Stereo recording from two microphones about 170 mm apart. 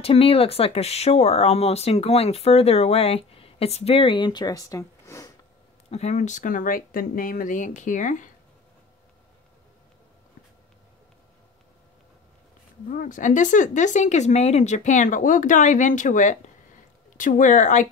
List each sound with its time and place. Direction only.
0.0 s speech: 35° left (ahead or behind); by 5.3 s 20° left (ahead or behind)
5.9 s speech: 40° left (ahead or behind)
12.9 s speech: 50° left (ahead or behind)